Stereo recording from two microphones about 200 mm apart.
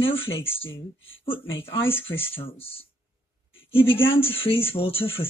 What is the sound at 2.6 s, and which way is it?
Speech, 30° left (ahead or behind).